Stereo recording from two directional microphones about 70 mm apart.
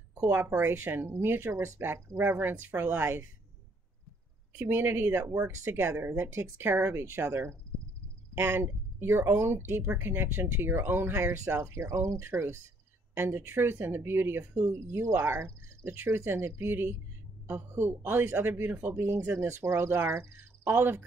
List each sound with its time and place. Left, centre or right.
0.1 s speech: right
4.6 s speech: right
11.2 s speech: right